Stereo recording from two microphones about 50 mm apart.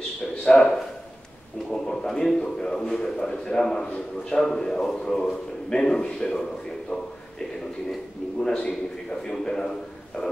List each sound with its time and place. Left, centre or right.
0.4 s a man's voice: centre
8.4 s a man's voice: centre
10.2 s a sound: left